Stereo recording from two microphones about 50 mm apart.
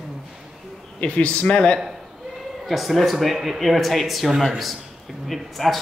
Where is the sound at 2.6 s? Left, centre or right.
Centre.